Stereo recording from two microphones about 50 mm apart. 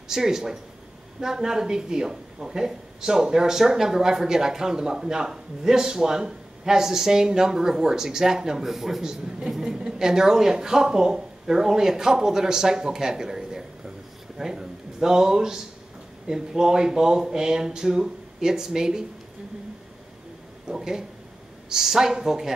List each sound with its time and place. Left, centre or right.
0.1 s a woman's voice: centre
20.6 s a woman's voice: centre